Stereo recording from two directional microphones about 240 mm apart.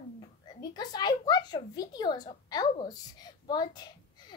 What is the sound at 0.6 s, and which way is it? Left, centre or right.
A woman's voice, centre.